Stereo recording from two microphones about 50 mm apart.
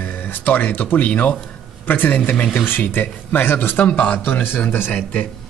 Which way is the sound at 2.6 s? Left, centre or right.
Left.